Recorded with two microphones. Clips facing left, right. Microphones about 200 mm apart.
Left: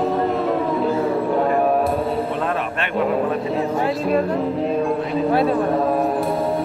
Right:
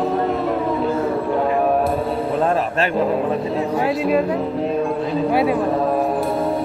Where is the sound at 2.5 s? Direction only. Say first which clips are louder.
Right 4 dB; 35° right (ahead or behind).